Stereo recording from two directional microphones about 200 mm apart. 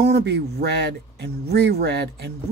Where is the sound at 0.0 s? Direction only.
55° right (ahead or behind).